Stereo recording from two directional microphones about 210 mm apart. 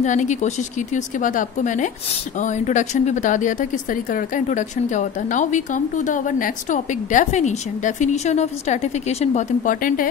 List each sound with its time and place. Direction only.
0.0 s speech: 35° left (ahead or behind)